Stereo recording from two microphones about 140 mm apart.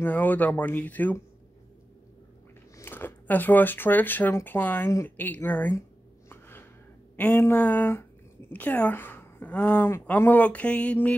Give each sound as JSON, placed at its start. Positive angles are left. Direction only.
{"t": 0.0, "sound": "speech", "side_deg": 10}
{"t": 2.8, "sound": "speech", "side_deg": 15}
{"t": 5.8, "sound": "a sound", "side_deg": 15}
{"t": 7.2, "sound": "speech", "side_deg": 15}